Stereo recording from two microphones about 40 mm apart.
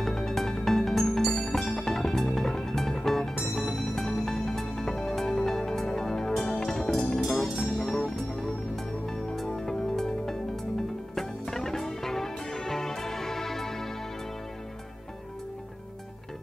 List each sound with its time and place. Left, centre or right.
0.0 s music: centre